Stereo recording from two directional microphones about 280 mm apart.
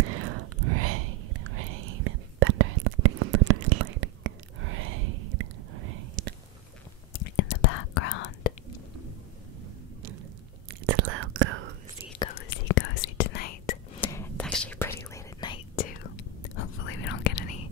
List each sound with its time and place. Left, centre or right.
0.0 s whispering: right
6.2 s whispering: right
7.3 s whispering: left
10.9 s whispering: right
12.4 s whispering: left
13.9 s whispering: centre
16.5 s whispering: left